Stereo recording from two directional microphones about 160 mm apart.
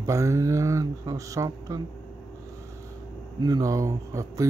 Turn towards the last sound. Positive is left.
turn(degrees=-20)  # may be behind; listen again after turning